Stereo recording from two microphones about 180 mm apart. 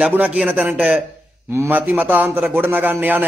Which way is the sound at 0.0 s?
10° right (ahead or behind).